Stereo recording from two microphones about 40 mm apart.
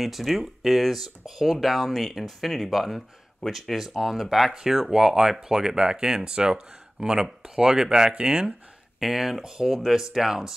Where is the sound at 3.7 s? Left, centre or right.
Centre; by 8.5 s right.